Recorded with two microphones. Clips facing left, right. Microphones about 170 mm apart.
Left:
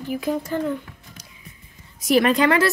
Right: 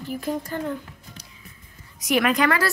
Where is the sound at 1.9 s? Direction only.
30° left (ahead or behind).